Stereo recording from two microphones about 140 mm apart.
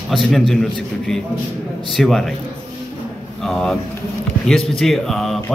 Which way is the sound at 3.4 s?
5° left (ahead or behind).